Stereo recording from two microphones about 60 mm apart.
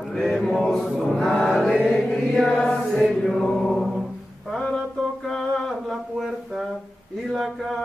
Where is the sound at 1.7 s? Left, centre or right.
Centre.